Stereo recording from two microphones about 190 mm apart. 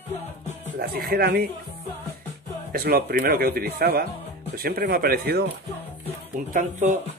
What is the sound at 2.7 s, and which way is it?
A man's voice, 55° right (ahead or behind).